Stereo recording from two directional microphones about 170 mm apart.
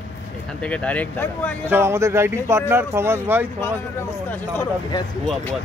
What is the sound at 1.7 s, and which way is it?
Speech, 15° right (ahead or behind).